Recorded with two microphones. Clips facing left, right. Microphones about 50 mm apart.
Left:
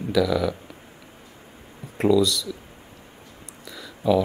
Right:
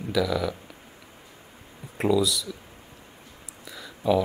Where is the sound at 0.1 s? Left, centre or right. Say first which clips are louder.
Left 4 dB; centre.